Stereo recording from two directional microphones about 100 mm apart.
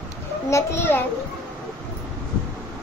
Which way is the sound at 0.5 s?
25° left (ahead or behind).